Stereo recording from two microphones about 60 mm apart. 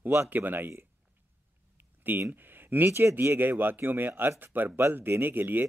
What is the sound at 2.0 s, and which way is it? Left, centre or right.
Speech, right.